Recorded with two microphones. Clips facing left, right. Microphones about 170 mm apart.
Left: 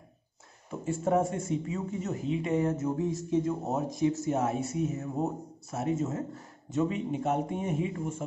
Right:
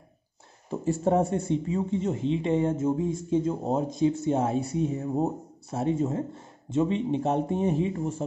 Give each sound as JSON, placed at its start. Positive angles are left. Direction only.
{"t": 1.0, "sound": "speech", "side_deg": -35}